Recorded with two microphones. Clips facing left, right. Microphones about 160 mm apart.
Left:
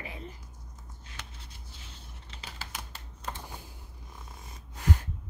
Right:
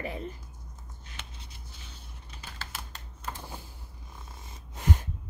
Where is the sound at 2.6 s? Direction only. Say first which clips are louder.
Right 1 dB; 10° left (ahead or behind).